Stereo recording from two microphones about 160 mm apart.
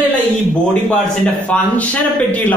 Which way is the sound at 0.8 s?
10° left (ahead or behind).